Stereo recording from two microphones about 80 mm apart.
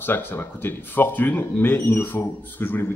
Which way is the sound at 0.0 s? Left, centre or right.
Left.